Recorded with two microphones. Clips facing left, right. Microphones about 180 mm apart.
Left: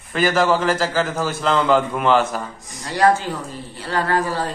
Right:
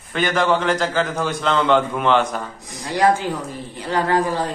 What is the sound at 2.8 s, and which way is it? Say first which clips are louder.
Speech: even; 15° right (ahead or behind).